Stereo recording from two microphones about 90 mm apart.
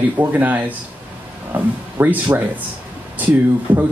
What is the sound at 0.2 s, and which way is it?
Speech, 20° right (ahead or behind).